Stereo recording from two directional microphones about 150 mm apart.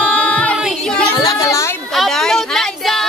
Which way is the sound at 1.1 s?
25° left (ahead or behind).